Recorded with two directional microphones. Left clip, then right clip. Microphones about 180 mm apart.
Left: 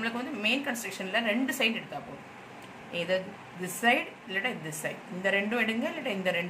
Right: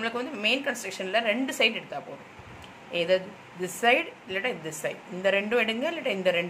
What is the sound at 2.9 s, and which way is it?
A woman's voice, 20° right (ahead or behind).